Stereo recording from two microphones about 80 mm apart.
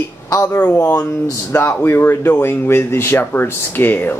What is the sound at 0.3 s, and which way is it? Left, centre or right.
Speech, left.